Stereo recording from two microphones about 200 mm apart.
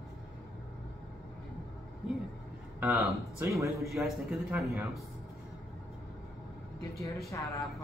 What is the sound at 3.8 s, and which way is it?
Speech, centre (ahead or behind).